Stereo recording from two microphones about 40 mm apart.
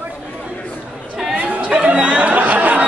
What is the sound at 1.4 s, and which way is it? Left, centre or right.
Chatter, right.